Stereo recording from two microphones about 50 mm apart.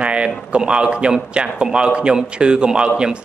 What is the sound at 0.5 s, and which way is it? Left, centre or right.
A man's voice, centre.